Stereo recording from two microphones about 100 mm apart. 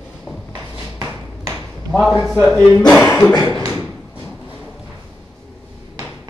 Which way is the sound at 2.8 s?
10° left (ahead or behind).